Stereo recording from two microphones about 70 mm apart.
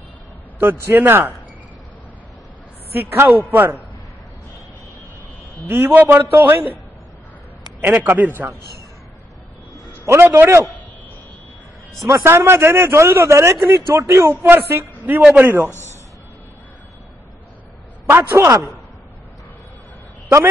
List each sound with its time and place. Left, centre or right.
0.6 s speech: right
2.9 s a man's voice: right
5.7 s speech: right
7.8 s a man's voice: right
10.0 s speech: right
12.2 s a man's voice: right
18.3 s speech: right